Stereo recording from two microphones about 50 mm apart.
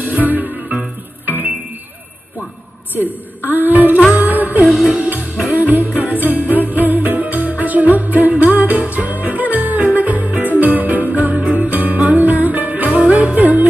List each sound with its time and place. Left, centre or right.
0.0 s music: right
3.0 s a woman's voice: right
4.1 s jingle bell: right
4.6 s music: centre
5.5 s music: right